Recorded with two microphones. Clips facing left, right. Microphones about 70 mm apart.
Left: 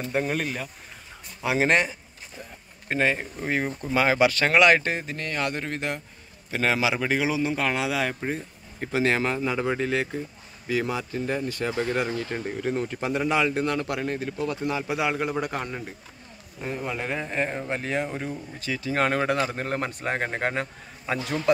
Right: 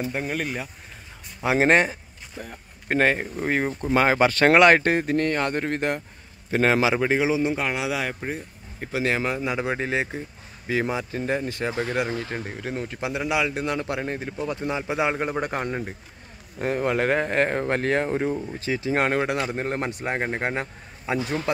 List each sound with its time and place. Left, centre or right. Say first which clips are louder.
0.0 s speech: left 1 dB; centre
1.4 s speech: right 3 dB; right
3.2 s speech: right 3 dB; right
7.0 s a man's voice: right 3 dB; right
10.7 s speech: right 1 dB; right
11.6 s a man's voice: left 2 dB; centre; by 15.9 s right
16.5 s speech: right 7 dB; right
18.0 s a man's voice: right 7 dB; right; by 21.4 s centre